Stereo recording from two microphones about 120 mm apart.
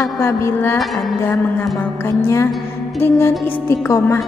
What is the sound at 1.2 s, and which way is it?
A woman's voice, 20° left (ahead or behind).